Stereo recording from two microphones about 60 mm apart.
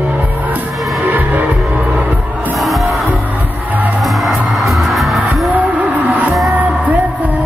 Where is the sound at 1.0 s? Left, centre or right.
Right.